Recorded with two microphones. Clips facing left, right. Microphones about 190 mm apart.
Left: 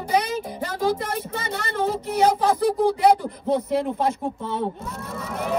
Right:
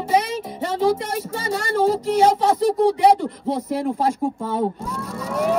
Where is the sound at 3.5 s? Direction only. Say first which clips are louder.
Left 3 dB; 35° right (ahead or behind).